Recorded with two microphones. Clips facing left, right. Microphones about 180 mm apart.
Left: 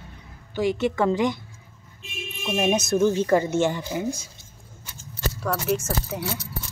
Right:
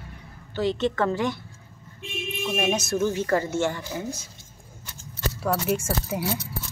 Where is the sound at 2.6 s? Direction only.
20° left (ahead or behind).